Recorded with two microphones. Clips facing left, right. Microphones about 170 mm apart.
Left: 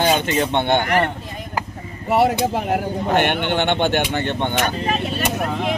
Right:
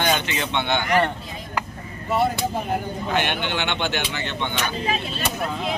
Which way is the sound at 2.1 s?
70° left (ahead or behind).